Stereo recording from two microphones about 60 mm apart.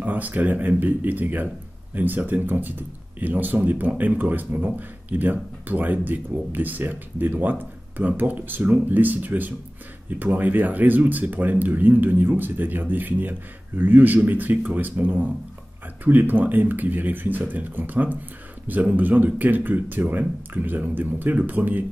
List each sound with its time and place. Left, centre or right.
0.0 s speech: right